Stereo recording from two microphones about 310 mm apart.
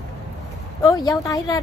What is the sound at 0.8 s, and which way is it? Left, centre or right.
Speech, centre.